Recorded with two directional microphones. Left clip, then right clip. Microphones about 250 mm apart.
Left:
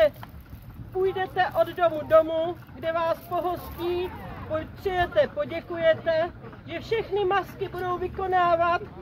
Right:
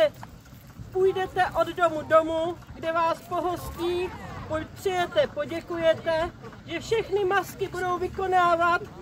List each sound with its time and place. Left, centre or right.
1.0 s speech: right
3.7 s speech: right
4.5 s speech: centre